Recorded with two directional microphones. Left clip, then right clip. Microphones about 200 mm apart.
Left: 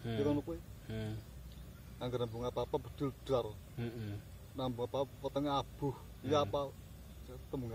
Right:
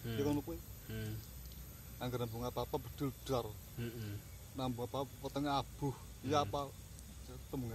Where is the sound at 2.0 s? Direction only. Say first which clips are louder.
Left 3 dB; 20° right (ahead or behind).